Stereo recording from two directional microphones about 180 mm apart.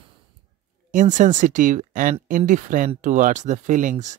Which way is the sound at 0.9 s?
45° right (ahead or behind).